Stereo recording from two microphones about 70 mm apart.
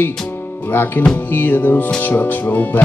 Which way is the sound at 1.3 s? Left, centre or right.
Left.